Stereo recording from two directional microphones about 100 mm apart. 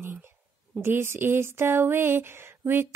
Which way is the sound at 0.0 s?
20° right (ahead or behind).